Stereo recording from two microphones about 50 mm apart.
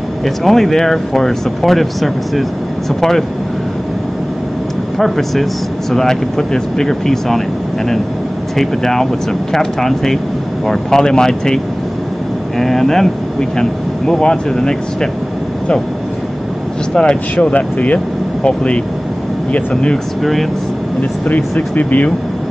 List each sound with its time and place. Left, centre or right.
0.2 s speech: centre
4.9 s speech: centre
8.5 s speech: centre
16.9 s speech: centre
17.4 s speech: left
21.5 s speech: left